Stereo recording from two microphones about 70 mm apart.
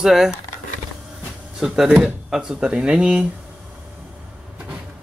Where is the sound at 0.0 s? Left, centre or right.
Centre.